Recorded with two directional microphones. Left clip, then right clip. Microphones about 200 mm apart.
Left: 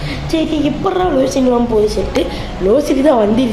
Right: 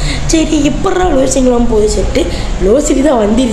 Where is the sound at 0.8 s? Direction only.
5° right (ahead or behind).